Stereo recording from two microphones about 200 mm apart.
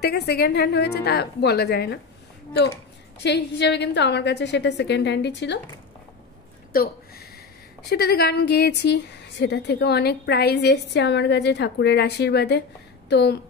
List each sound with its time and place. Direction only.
0.0 s speech: 55° left (ahead or behind)
3.2 s speech: 60° left (ahead or behind)
6.7 s speech: 50° left (ahead or behind)